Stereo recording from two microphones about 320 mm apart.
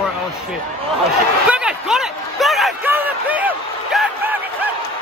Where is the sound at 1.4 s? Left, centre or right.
Centre.